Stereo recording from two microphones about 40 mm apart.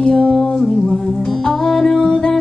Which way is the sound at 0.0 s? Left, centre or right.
Left.